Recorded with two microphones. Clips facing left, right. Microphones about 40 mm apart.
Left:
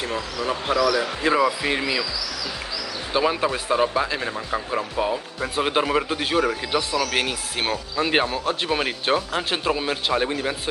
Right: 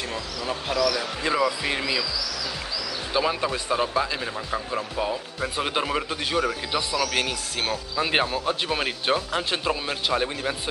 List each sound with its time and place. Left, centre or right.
0.5 s speech: left
1.2 s speech: centre
3.1 s speech: centre
7.9 s speech: centre